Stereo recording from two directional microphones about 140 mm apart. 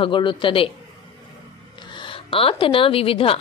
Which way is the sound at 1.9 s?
40° left (ahead or behind).